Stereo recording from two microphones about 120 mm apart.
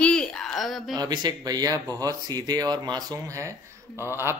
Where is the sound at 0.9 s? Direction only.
35° right (ahead or behind).